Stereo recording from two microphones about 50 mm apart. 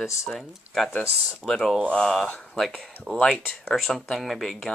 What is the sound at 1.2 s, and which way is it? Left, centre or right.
Speech, centre.